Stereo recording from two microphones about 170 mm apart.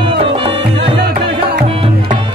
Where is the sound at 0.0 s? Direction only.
30° right (ahead or behind).